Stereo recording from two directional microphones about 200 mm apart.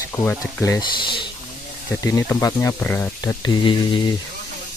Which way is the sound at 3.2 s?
20° left (ahead or behind).